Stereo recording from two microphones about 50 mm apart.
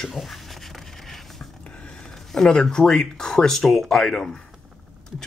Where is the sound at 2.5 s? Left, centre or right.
Centre.